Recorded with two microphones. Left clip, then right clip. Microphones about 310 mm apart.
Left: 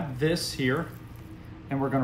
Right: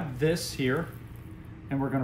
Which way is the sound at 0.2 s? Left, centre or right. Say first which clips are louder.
Left 1 dB; centre.